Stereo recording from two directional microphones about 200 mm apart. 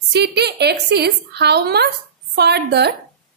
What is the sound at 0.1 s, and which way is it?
A woman's voice, 55° right (ahead or behind).